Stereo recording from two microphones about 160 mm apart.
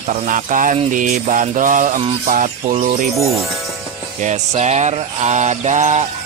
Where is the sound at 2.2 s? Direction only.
55° right (ahead or behind).